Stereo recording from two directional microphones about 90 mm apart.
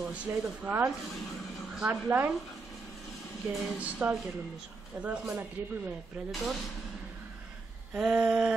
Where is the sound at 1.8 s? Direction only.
20° right (ahead or behind).